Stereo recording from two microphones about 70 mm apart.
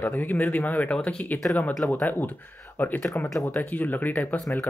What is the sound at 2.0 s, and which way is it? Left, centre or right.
Speech, left.